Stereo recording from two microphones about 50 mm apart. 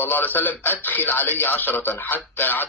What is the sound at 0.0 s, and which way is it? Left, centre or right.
A man's voice, left.